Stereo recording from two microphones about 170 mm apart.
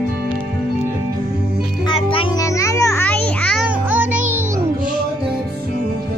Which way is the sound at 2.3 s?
20° left (ahead or behind).